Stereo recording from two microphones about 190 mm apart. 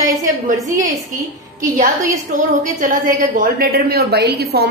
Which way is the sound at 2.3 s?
45° right (ahead or behind).